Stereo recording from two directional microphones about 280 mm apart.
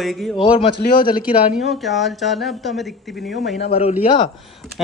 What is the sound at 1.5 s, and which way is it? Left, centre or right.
Speech, centre.